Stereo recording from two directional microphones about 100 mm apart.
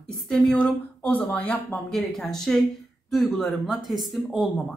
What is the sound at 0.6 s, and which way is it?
Speech, 15° left (ahead or behind).